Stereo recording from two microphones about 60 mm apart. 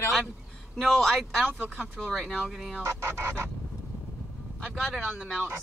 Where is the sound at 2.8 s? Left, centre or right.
Right.